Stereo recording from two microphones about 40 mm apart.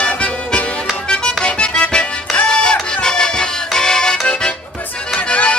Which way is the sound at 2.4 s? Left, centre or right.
Left.